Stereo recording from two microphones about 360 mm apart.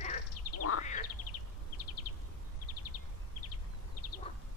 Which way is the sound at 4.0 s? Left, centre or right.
Left.